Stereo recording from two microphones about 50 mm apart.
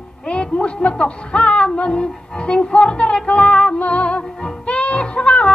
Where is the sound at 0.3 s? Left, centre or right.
Centre.